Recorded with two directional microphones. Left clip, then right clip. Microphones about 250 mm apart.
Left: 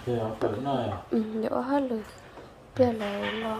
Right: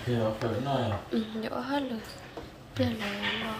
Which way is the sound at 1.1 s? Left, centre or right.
Left.